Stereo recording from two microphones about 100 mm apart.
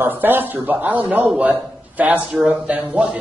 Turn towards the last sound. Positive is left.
turn(degrees=-10)  # may be behind; listen again after turning